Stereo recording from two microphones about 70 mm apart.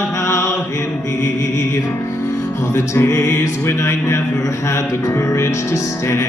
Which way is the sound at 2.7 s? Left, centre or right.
Left.